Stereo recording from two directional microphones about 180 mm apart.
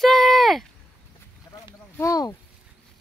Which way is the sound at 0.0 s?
Centre (ahead or behind).